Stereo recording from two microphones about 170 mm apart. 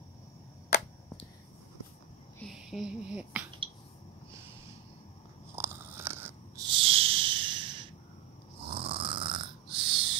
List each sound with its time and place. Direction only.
2.4 s speech: 5° right (ahead or behind)
5.6 s biting: 15° right (ahead or behind)
6.7 s a sound: 35° right (ahead or behind)
8.6 s snoring: 35° right (ahead or behind)